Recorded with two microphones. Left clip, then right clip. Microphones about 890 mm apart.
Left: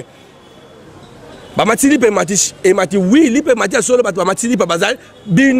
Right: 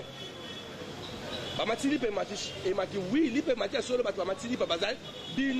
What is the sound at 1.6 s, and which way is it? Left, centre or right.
A man's voice, left.